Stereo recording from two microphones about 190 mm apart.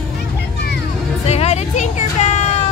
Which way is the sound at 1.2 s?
35° left (ahead or behind).